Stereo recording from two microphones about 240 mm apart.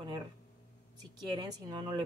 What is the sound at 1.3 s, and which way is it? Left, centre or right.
Speech, centre.